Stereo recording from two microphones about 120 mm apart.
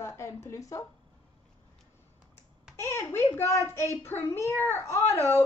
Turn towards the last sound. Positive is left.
turn(degrees=20)  # may be behind; listen again after turning